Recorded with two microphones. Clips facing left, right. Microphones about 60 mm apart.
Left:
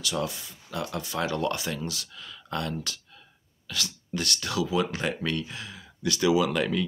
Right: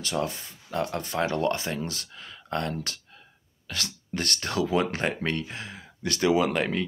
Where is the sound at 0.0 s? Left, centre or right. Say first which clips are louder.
Right 1 dB; right.